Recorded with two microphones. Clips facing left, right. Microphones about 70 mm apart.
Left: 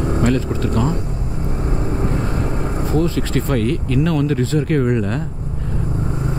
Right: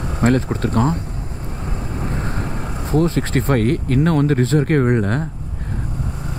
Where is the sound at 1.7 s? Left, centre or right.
Left.